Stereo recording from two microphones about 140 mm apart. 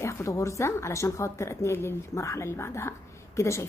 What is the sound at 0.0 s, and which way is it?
A woman's voice, 20° left (ahead or behind).